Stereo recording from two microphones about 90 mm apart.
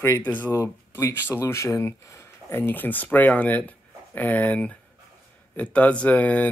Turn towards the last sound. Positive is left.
turn(degrees=15)  # may be behind; listen again after turning